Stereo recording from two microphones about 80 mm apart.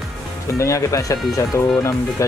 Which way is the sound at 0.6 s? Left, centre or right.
Left.